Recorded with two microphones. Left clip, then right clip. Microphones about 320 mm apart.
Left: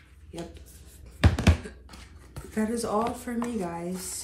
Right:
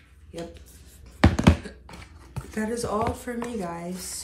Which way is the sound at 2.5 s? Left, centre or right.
Centre.